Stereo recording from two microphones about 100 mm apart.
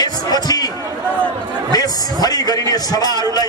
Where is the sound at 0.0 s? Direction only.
40° left (ahead or behind).